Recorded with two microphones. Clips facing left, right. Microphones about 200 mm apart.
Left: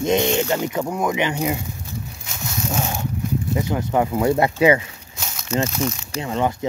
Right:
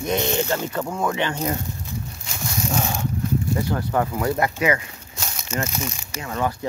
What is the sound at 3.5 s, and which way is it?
Speech, 20° left (ahead or behind).